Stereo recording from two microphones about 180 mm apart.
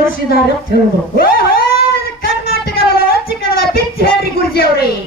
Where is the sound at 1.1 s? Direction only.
55° left (ahead or behind).